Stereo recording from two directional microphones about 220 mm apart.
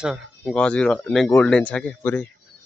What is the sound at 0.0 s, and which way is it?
Speech, centre (ahead or behind).